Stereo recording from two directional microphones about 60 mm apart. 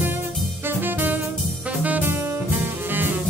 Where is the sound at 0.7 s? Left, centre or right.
Right.